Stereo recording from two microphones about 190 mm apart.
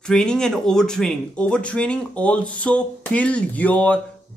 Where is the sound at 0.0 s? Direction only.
5° left (ahead or behind).